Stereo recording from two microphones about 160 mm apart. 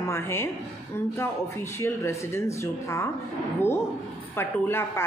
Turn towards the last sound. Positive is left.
turn(degrees=15)  # may be behind; listen again after turning